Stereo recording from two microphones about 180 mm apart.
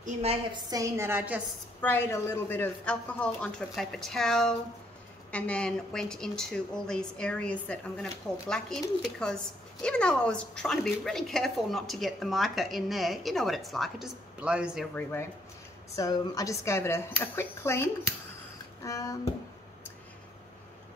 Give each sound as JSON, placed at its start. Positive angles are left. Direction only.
{"t": 0.0, "sound": "a woman's voice", "side_deg": -35}
{"t": 0.7, "sound": "a woman's voice", "side_deg": -20}
{"t": 1.8, "sound": "a woman's voice", "side_deg": 10}
{"t": 16.0, "sound": "a woman's voice", "side_deg": 20}